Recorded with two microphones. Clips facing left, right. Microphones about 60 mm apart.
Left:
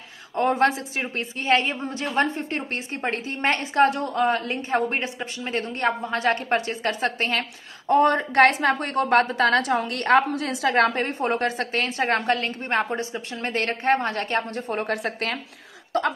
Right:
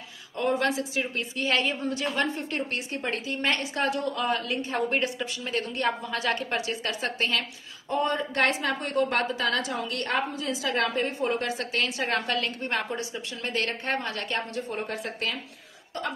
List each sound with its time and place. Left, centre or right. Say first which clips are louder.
0.4 s a woman's voice: left 5 dB; left
7.9 s a woman's voice: left 8 dB; left
15.9 s a sound: left 9 dB; left